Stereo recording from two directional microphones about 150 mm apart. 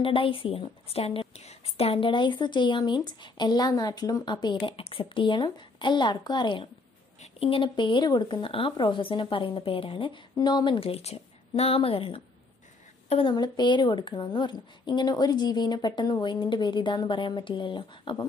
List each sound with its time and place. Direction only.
0.0 s a woman's voice: 35° left (ahead or behind)